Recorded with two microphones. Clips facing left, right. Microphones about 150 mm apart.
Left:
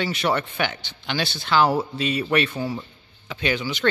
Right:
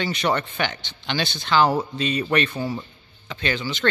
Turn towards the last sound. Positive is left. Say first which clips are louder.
# left 1 dB
turn(degrees=10)  # may be behind; listen again after turning